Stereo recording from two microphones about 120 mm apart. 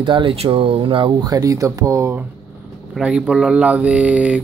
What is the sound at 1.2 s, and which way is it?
Speech, 30° right (ahead or behind).